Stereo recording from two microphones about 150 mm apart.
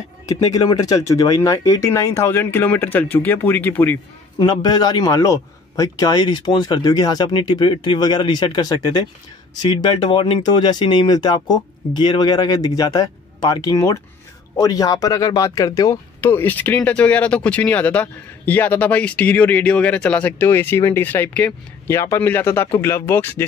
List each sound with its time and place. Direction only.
0.3 s a man's voice: 25° left (ahead or behind)
4.4 s a man's voice: 25° left (ahead or behind)